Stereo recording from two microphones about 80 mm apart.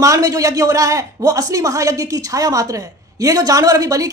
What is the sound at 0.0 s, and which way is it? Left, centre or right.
Speech, right.